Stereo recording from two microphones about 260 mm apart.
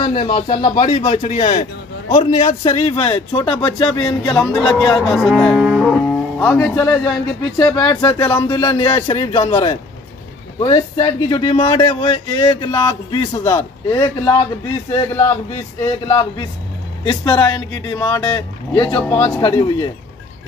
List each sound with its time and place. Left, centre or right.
0.0 s speech: centre
5.0 s cattle: centre
5.4 s speech: centre
19.0 s speech: centre
19.4 s speech: centre